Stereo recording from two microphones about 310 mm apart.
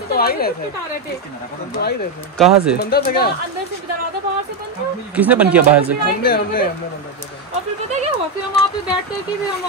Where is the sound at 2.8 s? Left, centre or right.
Left.